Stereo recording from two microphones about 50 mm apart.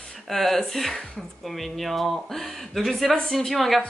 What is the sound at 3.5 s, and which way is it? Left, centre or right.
Speech, centre.